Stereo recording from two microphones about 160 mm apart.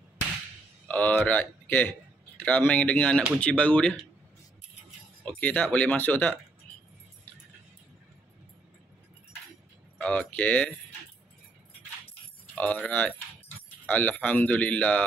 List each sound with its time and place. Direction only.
0.8 s a man's voice: 10° left (ahead or behind)
5.2 s speech: 10° left (ahead or behind)
9.9 s speech: 10° left (ahead or behind)
12.5 s speech: 10° left (ahead or behind)